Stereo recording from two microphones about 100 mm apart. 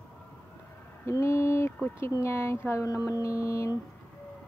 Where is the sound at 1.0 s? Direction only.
30° left (ahead or behind).